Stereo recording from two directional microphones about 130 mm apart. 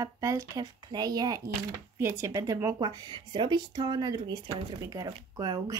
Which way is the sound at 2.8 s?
35° right (ahead or behind).